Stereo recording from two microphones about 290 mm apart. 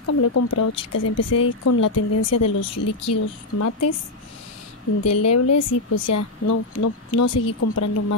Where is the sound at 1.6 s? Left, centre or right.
Left.